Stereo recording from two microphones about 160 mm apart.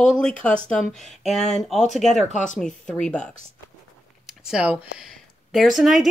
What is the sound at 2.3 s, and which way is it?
Speech, 50° left (ahead or behind).